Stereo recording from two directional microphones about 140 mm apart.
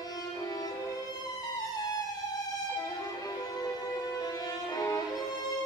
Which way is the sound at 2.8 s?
25° left (ahead or behind).